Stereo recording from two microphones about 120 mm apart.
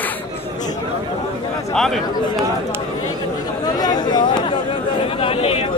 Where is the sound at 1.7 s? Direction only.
Centre (ahead or behind).